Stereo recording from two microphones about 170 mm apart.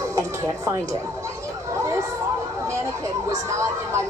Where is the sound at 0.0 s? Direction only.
20° right (ahead or behind).